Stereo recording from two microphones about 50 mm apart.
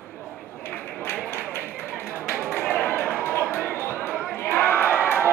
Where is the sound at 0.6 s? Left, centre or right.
Left.